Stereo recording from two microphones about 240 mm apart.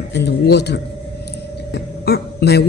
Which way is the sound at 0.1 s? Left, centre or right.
Left.